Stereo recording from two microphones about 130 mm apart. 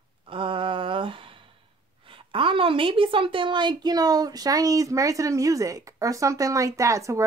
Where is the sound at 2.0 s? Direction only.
40° right (ahead or behind).